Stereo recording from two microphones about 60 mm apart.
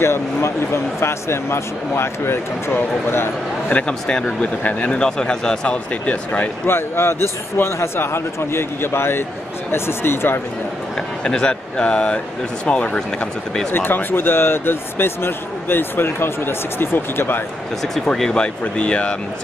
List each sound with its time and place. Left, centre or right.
0.0 s speech: left
3.7 s speech: centre
6.0 s speech: left
6.7 s speech: left
11.2 s speech: centre
13.7 s speech: left
17.9 s speech: centre